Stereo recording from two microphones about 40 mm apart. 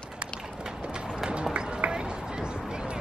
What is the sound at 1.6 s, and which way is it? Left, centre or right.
Run, right.